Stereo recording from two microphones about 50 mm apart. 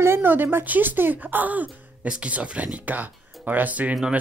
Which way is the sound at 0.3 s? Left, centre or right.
Right.